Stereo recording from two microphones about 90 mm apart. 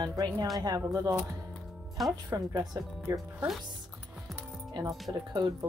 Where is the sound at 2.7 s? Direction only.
40° right (ahead or behind).